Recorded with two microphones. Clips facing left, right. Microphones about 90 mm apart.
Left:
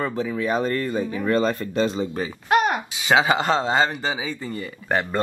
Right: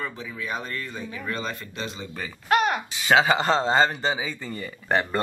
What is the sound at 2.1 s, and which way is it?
Speech, 20° left (ahead or behind).